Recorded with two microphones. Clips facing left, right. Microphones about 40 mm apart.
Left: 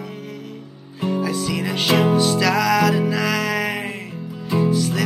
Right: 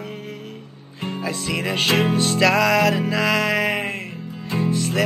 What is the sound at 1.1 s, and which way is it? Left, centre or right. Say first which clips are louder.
Music: left 1 dB; right.